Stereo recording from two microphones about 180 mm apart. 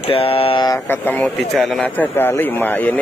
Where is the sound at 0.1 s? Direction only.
30° left (ahead or behind).